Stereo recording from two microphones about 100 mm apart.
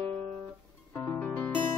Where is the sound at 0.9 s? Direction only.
20° left (ahead or behind).